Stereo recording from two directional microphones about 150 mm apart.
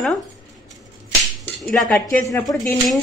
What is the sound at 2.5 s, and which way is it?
Speech, 20° left (ahead or behind).